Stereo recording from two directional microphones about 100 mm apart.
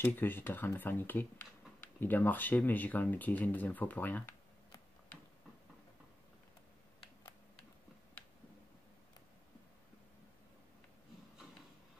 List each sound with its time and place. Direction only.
0.0 s speech: 20° left (ahead or behind)